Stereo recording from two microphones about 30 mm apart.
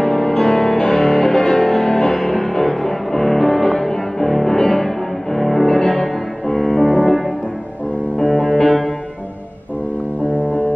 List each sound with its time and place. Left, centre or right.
0.0 s music: left
2.1 s music: centre
5.7 s music: left
6.9 s music: centre
8.6 s music: centre